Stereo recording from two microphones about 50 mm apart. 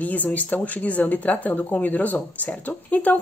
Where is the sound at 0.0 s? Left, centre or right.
Left.